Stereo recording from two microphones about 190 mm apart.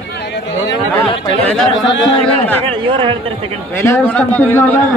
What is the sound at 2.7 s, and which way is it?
Speech, 25° right (ahead or behind).